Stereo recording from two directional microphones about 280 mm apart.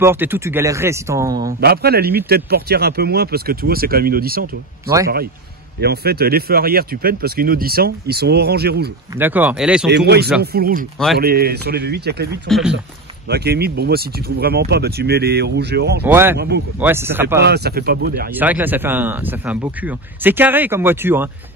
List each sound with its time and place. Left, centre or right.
0.0 s speech: centre
1.6 s a man's voice: right
9.1 s speech: centre
9.8 s a man's voice: right
12.4 s speech: centre
13.3 s a man's voice: right
16.0 s speech: centre
16.3 s a man's voice: right
16.8 s speech: centre
17.4 s a man's voice: right
18.3 s speech: centre